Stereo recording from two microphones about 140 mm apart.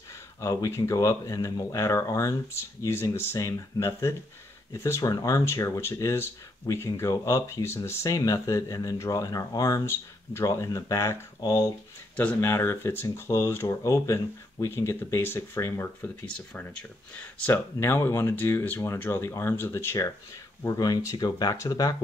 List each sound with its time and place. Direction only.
0.4 s speech: 25° left (ahead or behind)